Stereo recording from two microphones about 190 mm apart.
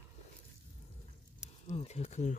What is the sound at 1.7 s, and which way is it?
Speech, 35° left (ahead or behind).